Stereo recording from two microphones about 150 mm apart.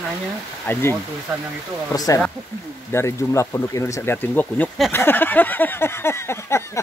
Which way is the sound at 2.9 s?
20° left (ahead or behind).